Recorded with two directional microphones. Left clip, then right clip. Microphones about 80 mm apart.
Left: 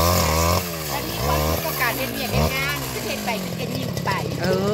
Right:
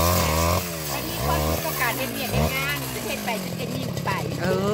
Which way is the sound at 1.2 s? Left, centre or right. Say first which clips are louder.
Left 2 dB; left.